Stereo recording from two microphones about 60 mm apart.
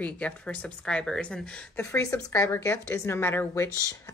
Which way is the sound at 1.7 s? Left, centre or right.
Left.